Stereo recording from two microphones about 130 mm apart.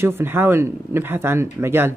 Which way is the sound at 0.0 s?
15° right (ahead or behind).